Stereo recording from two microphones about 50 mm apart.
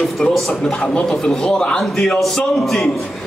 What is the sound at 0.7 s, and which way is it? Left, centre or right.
Speech, left.